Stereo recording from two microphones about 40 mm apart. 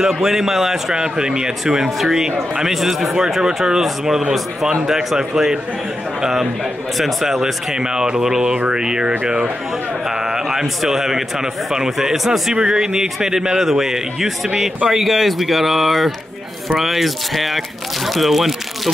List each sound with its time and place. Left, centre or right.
0.0 s a man's voice: centre
7.0 s a man's voice: centre